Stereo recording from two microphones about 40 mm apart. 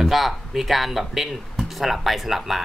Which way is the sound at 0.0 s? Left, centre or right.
Centre.